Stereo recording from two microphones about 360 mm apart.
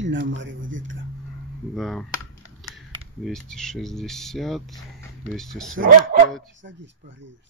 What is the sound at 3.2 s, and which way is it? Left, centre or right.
Speech, centre.